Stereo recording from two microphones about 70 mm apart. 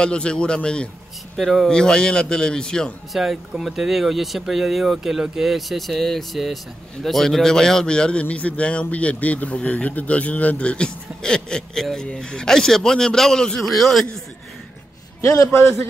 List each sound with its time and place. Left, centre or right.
0.0 s speech: centre
1.3 s speech: centre
3.1 s speech: centre
15.2 s a man's voice: left